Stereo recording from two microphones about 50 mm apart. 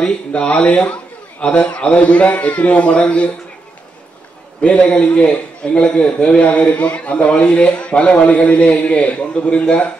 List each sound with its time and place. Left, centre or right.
0.0 s a man's voice: left
4.6 s a man's voice: left